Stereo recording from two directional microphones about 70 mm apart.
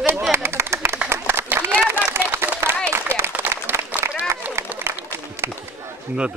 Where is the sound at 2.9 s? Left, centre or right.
Right.